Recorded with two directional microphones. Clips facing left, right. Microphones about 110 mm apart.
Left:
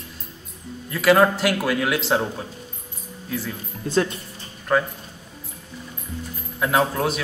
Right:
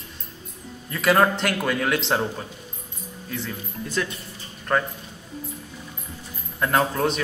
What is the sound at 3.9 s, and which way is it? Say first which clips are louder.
Speech: left 7 dB; 30° left (ahead or behind).